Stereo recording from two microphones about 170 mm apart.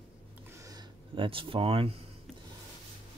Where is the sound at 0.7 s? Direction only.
25° right (ahead or behind).